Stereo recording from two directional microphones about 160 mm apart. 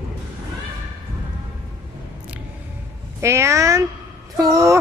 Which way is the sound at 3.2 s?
15° right (ahead or behind).